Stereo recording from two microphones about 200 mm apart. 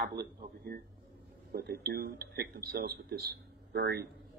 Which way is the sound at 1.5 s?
50° right (ahead or behind).